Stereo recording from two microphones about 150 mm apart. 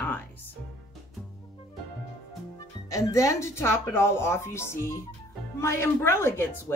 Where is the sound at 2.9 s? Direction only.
20° left (ahead or behind).